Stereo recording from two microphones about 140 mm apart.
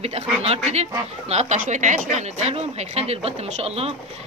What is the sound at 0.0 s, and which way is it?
Speech, 45° right (ahead or behind).